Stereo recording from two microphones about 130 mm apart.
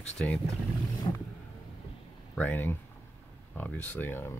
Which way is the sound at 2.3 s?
15° left (ahead or behind).